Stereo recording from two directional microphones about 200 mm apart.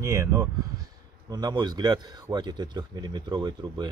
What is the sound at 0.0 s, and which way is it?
Speech, 15° right (ahead or behind).